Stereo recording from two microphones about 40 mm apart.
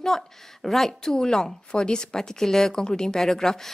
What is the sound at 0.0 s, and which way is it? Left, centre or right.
A woman's voice, centre.